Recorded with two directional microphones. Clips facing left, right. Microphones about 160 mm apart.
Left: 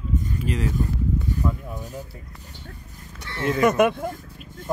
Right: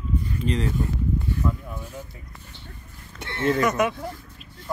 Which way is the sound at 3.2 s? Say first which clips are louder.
Right 1 dB; 55° right (ahead or behind).